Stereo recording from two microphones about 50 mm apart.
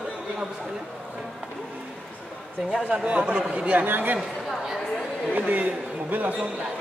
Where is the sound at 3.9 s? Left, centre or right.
Right.